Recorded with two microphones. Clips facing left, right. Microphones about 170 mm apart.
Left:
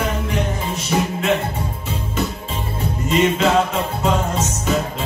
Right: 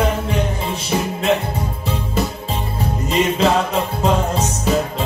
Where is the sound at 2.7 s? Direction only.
35° right (ahead or behind).